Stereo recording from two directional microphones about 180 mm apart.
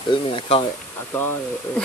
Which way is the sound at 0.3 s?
30° left (ahead or behind).